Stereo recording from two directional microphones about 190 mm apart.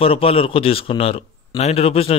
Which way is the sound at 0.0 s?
30° left (ahead or behind).